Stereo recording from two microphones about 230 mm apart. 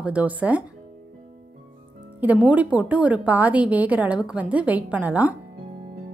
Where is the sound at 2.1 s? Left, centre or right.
Centre.